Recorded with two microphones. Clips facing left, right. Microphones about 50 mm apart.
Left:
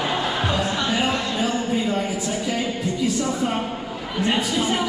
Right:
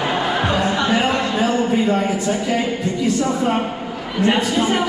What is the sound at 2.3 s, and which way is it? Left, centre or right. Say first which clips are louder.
A woman's voice: right 5 dB; right.